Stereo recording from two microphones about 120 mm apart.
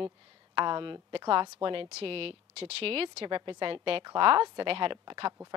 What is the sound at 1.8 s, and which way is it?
A woman's voice, 55° right (ahead or behind).